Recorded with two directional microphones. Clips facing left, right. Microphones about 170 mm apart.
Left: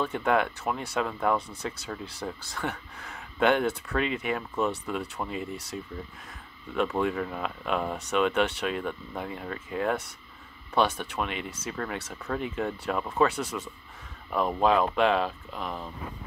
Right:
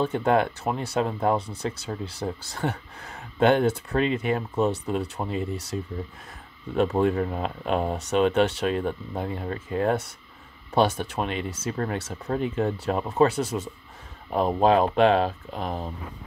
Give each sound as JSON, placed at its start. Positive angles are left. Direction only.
{"t": 0.0, "sound": "speech", "side_deg": -35}